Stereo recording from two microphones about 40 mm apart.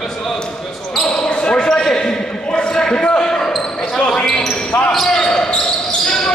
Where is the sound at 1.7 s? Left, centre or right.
Centre.